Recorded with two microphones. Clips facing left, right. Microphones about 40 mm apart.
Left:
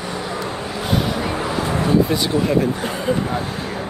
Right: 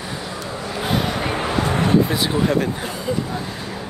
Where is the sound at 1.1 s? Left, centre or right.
Right.